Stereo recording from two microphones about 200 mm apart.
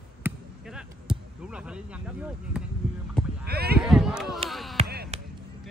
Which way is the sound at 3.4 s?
50° right (ahead or behind).